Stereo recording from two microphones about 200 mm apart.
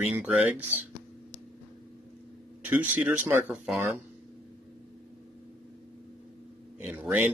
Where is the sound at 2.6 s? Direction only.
10° right (ahead or behind).